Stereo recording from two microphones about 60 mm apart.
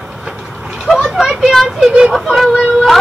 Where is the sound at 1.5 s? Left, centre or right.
Centre.